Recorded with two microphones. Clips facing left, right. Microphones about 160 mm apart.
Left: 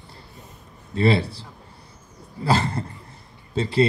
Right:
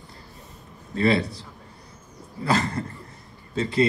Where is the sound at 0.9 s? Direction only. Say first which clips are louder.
Left 1 dB; 30° left (ahead or behind).